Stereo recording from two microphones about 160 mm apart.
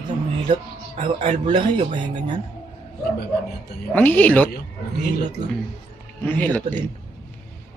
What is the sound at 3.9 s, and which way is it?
Speech, 10° left (ahead or behind).